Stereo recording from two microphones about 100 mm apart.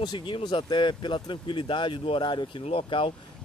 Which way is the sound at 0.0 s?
55° left (ahead or behind).